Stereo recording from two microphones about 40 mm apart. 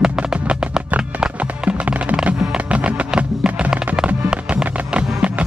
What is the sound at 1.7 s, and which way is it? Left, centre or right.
Music, right.